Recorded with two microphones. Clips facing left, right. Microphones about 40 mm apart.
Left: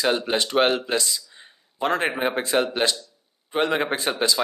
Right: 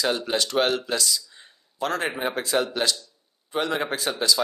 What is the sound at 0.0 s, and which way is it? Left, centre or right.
Speech, left.